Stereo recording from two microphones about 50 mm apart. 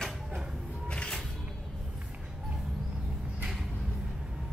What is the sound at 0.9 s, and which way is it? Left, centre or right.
Music, centre.